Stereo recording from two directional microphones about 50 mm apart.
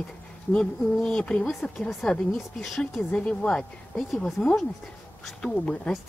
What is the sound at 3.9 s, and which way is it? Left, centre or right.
Speech, centre.